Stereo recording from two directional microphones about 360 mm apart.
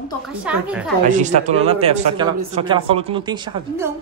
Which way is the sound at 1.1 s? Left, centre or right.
Centre.